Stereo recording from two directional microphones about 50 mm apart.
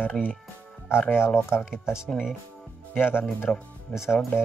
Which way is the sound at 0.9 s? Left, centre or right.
Left.